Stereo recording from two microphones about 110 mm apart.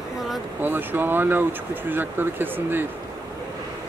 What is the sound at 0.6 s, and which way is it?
Speech, 20° right (ahead or behind).